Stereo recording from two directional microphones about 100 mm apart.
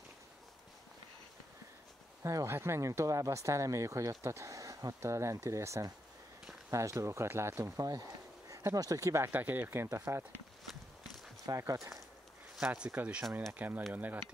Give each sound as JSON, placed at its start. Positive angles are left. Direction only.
{"t": 2.2, "sound": "speech", "side_deg": -30}
{"t": 11.4, "sound": "speech", "side_deg": -35}
{"t": 12.5, "sound": "speech", "side_deg": -10}